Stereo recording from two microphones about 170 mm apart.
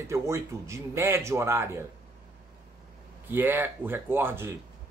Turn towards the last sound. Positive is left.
turn(degrees=-15)  # may be behind; listen again after turning